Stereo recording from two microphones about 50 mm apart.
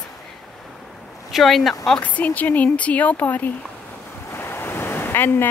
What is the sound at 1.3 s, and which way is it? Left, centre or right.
Speech, centre.